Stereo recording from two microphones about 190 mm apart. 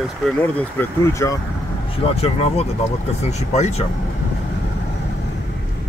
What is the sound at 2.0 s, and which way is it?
Speech, 30° left (ahead or behind).